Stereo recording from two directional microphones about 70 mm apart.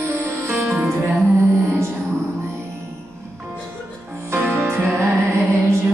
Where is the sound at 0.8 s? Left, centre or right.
Right.